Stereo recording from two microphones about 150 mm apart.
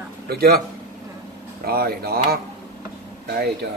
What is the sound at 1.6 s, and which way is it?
Speech, 90° right.